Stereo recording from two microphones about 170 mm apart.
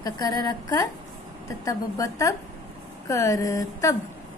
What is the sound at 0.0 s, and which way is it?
A woman's voice, 20° left (ahead or behind).